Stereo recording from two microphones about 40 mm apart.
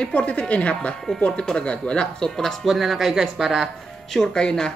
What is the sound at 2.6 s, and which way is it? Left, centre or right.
Speech, centre.